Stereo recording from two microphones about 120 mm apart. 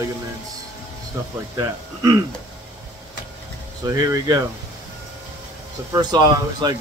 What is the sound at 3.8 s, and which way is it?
Speech, 30° right (ahead or behind).